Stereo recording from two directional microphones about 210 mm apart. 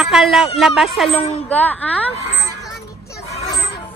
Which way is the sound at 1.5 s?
5° left (ahead or behind).